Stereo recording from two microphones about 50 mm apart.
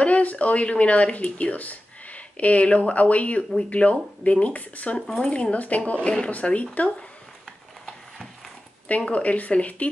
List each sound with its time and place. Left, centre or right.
0.0 s speech: left
8.8 s speech: left